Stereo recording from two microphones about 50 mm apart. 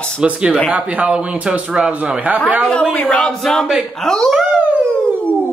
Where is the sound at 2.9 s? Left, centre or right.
Centre.